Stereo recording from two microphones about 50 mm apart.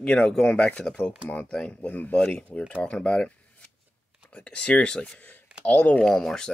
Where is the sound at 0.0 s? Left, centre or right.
Centre; by 2.1 s left.